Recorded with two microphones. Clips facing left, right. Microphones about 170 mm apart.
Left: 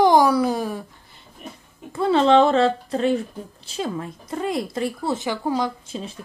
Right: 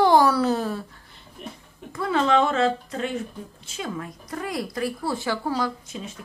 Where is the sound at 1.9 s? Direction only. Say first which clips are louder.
Left 5 dB; 30° left (ahead or behind).